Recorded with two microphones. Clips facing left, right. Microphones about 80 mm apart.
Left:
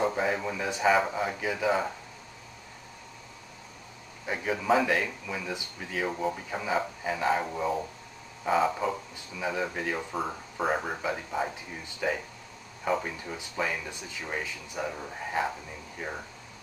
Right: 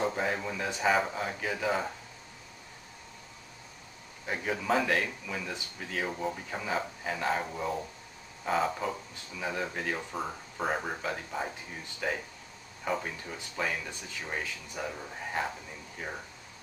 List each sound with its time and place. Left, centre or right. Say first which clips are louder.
0.0 s speech: left 3 dB; centre
0.8 s speech: left 3 dB; centre
1.1 s speech: left 3 dB; centre
4.3 s speech: left 3 dB; centre
13.2 s speech: left 2 dB; centre